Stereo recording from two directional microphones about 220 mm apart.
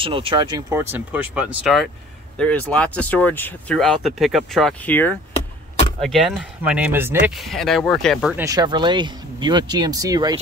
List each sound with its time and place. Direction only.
0.0 s speech: 25° right (ahead or behind); by 8.5 s 5° right (ahead or behind)
8.5 s speech: 20° right (ahead or behind)